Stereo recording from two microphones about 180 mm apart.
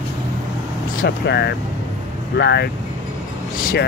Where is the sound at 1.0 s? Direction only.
70° left (ahead or behind).